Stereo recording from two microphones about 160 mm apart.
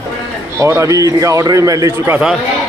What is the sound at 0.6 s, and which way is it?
A man's voice, 20° right (ahead or behind).